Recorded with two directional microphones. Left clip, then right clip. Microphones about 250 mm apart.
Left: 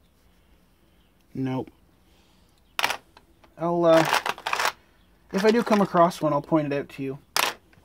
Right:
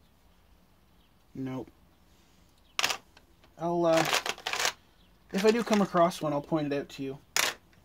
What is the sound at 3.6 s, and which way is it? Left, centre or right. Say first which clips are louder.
Shuffling cards: left 5 dB; left.